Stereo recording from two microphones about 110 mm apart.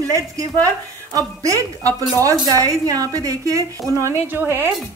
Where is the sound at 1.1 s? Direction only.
30° right (ahead or behind).